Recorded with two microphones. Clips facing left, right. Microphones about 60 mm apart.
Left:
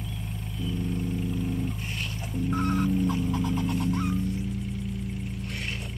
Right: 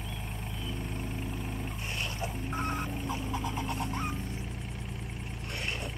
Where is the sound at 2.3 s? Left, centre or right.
Right.